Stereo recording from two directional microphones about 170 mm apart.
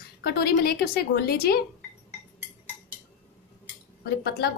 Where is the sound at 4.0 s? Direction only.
70° left (ahead or behind).